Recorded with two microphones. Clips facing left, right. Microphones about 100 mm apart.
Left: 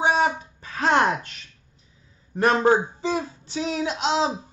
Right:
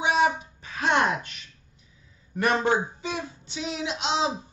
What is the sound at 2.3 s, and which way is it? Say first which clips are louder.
Speech: left 5 dB; 35° left (ahead or behind).